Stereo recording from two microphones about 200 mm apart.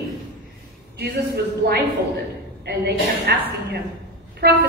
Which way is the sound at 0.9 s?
55° right (ahead or behind).